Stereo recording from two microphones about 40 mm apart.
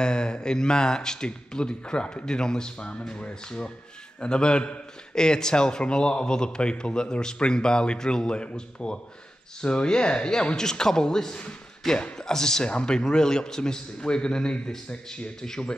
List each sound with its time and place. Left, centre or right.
0.0 s a man's voice: left